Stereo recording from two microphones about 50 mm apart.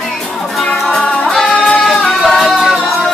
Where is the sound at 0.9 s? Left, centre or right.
Centre.